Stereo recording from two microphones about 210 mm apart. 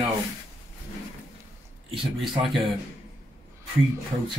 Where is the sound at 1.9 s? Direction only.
Centre (ahead or behind).